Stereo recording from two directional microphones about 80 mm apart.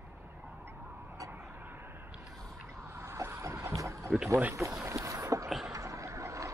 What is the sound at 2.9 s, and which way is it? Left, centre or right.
Boat, right.